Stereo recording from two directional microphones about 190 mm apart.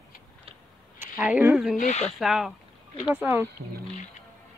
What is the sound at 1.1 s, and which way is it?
Speech, 5° right (ahead or behind).